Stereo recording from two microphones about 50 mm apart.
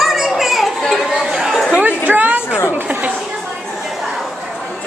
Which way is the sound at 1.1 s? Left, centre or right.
Centre.